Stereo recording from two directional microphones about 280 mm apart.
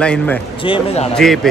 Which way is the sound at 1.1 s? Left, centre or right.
Centre.